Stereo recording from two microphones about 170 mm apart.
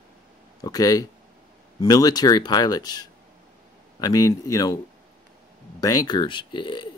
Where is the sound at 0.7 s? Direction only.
20° left (ahead or behind).